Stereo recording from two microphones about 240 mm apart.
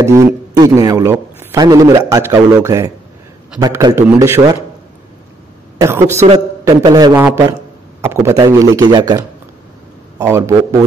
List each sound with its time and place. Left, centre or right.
0.0 s a man's voice: centre
5.8 s a man's voice: centre